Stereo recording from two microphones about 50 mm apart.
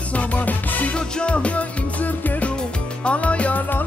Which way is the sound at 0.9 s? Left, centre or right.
Left.